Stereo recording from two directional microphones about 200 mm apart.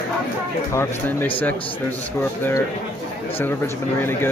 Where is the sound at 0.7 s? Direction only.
15° left (ahead or behind).